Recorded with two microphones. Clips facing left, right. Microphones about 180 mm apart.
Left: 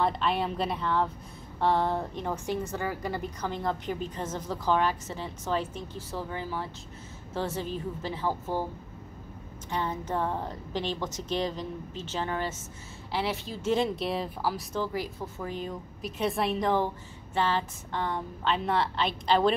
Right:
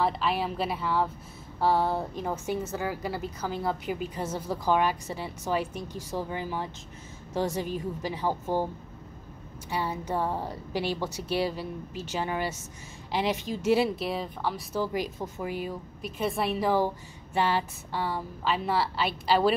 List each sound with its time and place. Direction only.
0.0 s a woman's voice: centre (ahead or behind)
9.7 s a woman's voice: 10° right (ahead or behind)
13.7 s a woman's voice: 5° right (ahead or behind)
14.8 s a woman's voice: 15° right (ahead or behind)